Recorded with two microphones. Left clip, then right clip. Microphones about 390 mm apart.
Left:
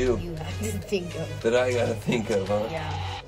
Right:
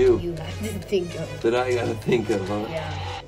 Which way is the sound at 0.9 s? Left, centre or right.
Centre.